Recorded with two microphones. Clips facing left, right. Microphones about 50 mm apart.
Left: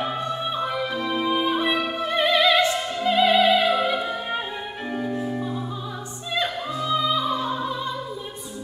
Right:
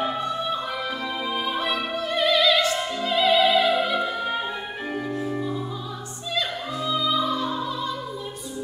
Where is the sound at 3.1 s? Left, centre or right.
Centre.